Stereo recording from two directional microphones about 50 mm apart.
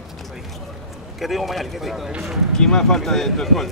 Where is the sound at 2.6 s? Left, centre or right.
Centre.